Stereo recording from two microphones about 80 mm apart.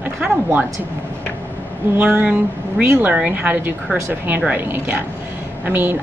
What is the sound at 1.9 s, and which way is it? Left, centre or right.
A woman's voice, right.